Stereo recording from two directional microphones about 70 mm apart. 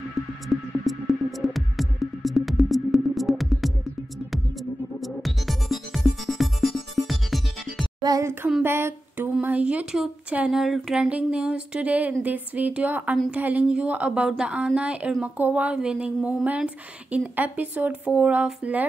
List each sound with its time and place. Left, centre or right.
0.5 s music: centre
5.0 s music: centre
8.2 s a sound: right
8.6 s speech: right
9.6 s a woman's voice: centre
10.5 s speech: centre
11.1 s a woman's voice: centre